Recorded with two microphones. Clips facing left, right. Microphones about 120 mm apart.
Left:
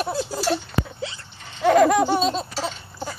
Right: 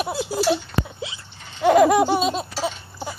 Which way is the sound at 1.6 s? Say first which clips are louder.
Right 1 dB; 15° right (ahead or behind).